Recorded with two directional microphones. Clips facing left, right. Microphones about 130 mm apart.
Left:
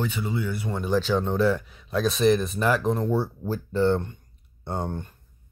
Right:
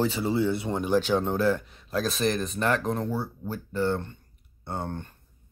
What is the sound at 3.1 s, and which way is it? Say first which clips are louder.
Speech: left 5 dB; 25° left (ahead or behind).